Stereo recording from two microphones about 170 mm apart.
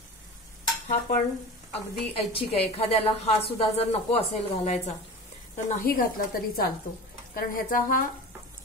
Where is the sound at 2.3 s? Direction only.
35° left (ahead or behind).